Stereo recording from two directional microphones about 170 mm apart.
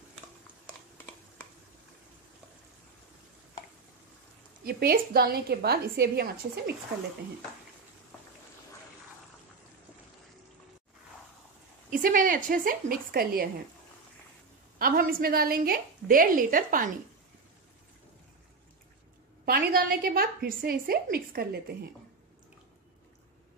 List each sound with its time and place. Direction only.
4.6 s a woman's voice: 65° right (ahead or behind)
11.9 s a woman's voice: 55° right (ahead or behind)
14.8 s a woman's voice: 60° right (ahead or behind)
19.4 s a woman's voice: 60° right (ahead or behind)